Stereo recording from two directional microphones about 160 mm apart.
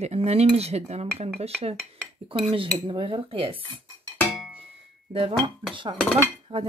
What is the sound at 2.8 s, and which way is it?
Speech, 35° right (ahead or behind).